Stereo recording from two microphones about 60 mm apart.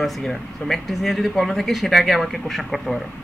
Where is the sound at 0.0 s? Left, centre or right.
Centre.